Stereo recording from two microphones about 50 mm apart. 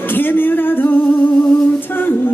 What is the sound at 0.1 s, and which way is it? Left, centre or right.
Music, left.